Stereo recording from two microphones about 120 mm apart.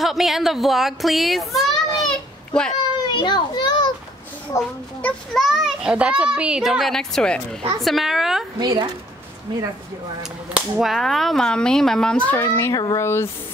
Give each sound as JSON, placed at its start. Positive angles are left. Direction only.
{"t": 0.0, "sound": "a sound", "side_deg": 0}
{"t": 3.1, "sound": "children playing", "side_deg": 35}
{"t": 4.5, "sound": "speech", "side_deg": 25}
{"t": 5.0, "sound": "a child's voice", "side_deg": 0}
{"t": 8.5, "sound": "speech", "side_deg": -35}
{"t": 10.5, "sound": "a child's voice", "side_deg": 0}
{"t": 12.3, "sound": "speech", "side_deg": 20}